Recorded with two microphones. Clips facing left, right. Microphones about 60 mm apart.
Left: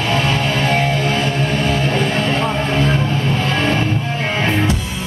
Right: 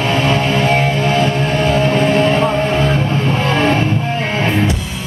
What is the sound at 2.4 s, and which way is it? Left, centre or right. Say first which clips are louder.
Music: right 4 dB; centre.